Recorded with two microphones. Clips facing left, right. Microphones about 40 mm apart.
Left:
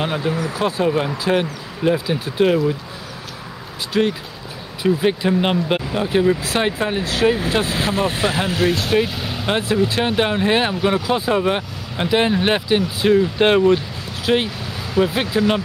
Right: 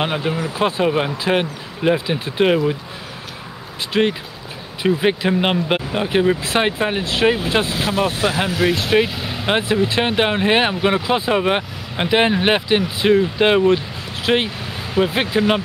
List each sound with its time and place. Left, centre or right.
0.0 s speech: right
3.9 s speech: right
7.6 s speech: left
8.7 s speech: right
9.2 s vehicle: centre
9.5 s speech: right